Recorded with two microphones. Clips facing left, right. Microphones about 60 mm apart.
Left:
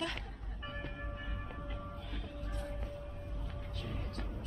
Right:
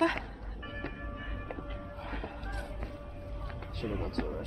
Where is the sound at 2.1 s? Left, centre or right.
Right.